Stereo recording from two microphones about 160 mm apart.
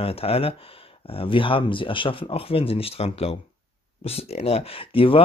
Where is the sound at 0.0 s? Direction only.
35° left (ahead or behind).